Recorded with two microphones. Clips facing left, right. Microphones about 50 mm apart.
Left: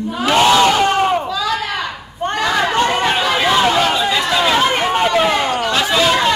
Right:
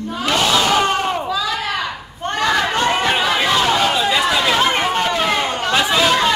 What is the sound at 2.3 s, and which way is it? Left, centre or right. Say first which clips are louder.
Crowd: left 1 dB; centre.